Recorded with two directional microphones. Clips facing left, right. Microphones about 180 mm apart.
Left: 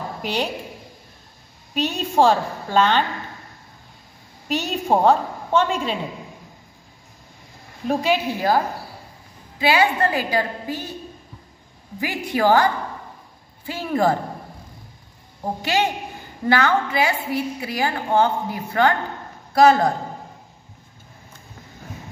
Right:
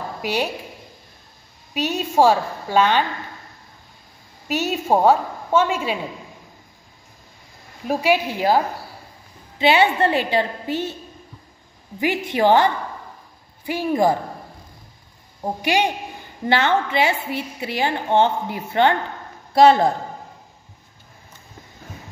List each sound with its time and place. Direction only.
0.2 s a woman's voice: 10° right (ahead or behind)
1.7 s a woman's voice: 10° right (ahead or behind)
4.5 s a woman's voice: 5° right (ahead or behind)
7.8 s a woman's voice: 10° right (ahead or behind)
9.6 s a woman's voice: 25° right (ahead or behind)
12.0 s a woman's voice: 20° right (ahead or behind)
15.6 s a woman's voice: 15° right (ahead or behind)